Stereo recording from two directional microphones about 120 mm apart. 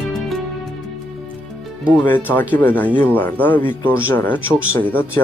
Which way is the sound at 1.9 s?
15° left (ahead or behind).